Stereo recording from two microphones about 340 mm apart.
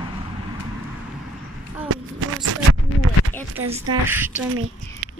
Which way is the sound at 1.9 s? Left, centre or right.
Right.